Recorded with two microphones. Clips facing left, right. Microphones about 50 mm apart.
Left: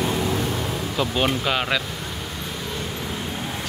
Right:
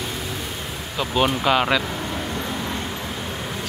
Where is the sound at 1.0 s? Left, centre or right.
Centre.